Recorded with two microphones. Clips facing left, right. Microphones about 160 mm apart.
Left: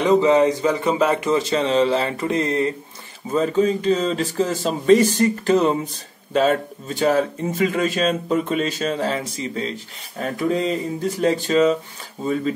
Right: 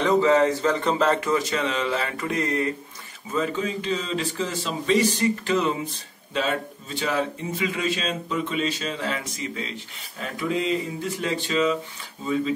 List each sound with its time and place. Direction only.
0.0 s a man's voice: 20° left (ahead or behind)
1.3 s speech: 30° left (ahead or behind)
3.3 s speech: 35° left (ahead or behind)